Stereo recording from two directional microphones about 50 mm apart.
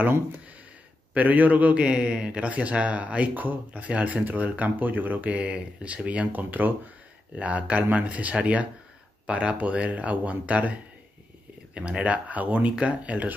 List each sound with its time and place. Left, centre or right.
1.1 s speech: right
1.9 s speech: centre